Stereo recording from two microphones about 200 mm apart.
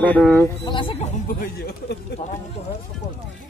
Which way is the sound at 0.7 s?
25° left (ahead or behind).